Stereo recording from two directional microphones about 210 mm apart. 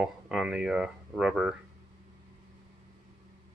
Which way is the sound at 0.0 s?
5° right (ahead or behind).